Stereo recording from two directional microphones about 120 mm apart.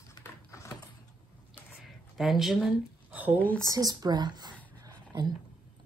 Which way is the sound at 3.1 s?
10° right (ahead or behind).